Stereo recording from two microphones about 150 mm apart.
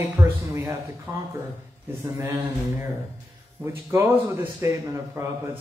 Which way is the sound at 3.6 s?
15° right (ahead or behind).